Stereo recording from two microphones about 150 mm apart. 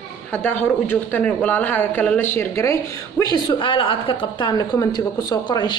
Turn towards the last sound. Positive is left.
turn(degrees=30)  # may be behind; listen again after turning